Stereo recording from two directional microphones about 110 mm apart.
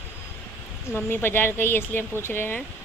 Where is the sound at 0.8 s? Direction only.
20° left (ahead or behind).